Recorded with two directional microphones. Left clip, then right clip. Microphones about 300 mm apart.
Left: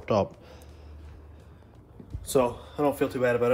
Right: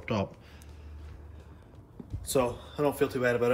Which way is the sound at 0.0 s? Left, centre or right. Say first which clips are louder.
Left 7 dB; centre.